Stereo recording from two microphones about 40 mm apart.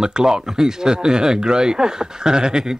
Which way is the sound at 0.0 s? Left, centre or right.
Centre.